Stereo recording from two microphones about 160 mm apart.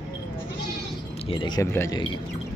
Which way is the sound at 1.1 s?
35° left (ahead or behind).